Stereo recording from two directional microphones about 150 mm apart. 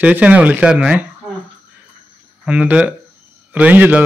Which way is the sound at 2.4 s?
10° right (ahead or behind).